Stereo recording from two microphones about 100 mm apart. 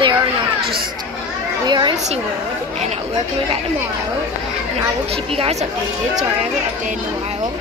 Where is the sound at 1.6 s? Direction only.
50° right (ahead or behind).